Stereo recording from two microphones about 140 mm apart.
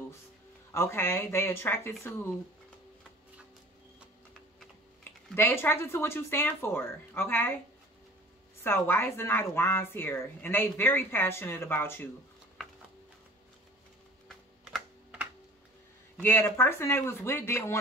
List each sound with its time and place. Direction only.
0.7 s speech: 15° left (ahead or behind)
5.3 s speech: 15° left (ahead or behind)
8.6 s speech: 15° left (ahead or behind)
16.2 s speech: 15° left (ahead or behind)